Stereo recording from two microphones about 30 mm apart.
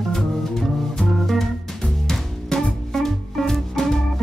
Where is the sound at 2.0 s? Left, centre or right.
Left.